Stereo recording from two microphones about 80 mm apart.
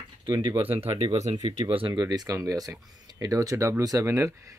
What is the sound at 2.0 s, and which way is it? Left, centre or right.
Speech, right.